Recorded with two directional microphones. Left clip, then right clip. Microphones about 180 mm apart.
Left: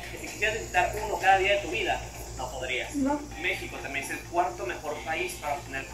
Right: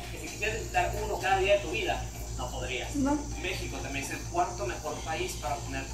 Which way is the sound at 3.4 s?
20° left (ahead or behind).